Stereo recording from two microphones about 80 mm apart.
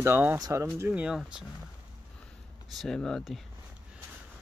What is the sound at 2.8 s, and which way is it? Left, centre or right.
Speech, centre.